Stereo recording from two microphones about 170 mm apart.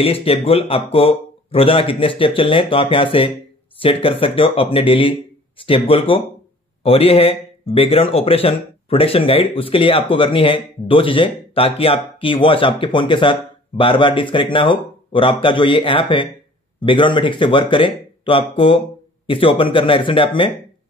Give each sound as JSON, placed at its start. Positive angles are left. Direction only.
{"t": 0.0, "sound": "speech", "side_deg": 35}